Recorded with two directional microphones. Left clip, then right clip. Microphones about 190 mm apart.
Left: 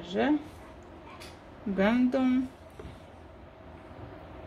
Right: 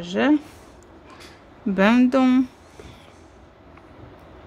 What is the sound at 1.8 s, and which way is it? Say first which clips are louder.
Speech: right 9 dB; 45° right (ahead or behind).